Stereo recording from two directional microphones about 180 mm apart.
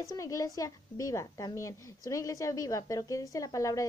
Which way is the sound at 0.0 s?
20° left (ahead or behind).